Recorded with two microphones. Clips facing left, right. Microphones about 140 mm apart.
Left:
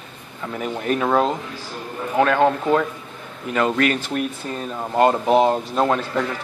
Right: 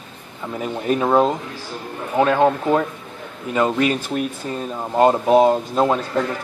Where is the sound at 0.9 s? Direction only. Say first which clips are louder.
Right 3 dB; 20° right (ahead or behind).